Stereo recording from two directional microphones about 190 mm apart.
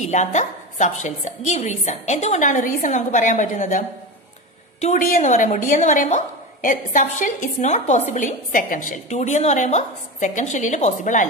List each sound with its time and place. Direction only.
0.0 s a woman's voice: 40° left (ahead or behind)